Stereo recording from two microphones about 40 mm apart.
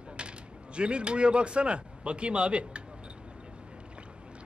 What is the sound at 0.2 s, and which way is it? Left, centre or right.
Speech, right.